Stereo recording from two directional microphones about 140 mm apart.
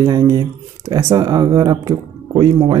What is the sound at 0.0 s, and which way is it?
Speech, 30° right (ahead or behind).